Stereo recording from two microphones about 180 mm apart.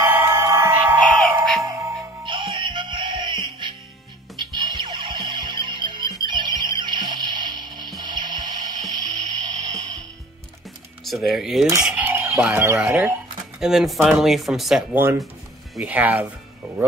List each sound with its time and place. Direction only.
0.1 s music: 15° right (ahead or behind)
11.1 s speech: centre (ahead or behind)